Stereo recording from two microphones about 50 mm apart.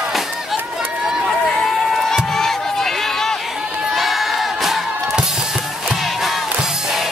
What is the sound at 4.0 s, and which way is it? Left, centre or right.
Crowd, centre.